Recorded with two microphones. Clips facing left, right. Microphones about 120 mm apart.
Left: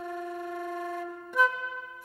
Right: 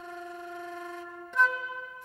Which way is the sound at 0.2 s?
50° left (ahead or behind).